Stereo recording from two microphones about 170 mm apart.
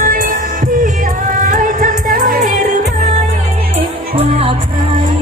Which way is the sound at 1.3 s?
50° right (ahead or behind).